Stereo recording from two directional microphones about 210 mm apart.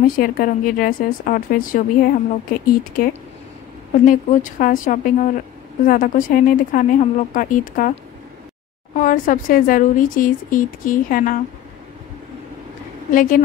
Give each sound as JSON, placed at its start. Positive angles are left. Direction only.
{"t": 0.0, "sound": "speech", "side_deg": 40}
{"t": 13.1, "sound": "speech", "side_deg": 40}